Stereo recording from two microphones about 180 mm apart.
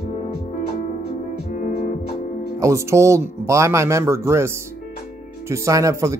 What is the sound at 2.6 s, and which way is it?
Speech, 15° right (ahead or behind).